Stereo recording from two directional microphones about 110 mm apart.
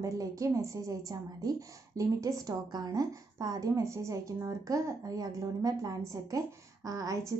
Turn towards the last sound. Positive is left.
turn(degrees=-30)  # may be behind; listen again after turning